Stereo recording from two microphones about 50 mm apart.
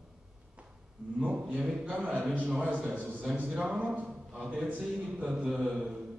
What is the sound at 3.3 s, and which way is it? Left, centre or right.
Speech, right.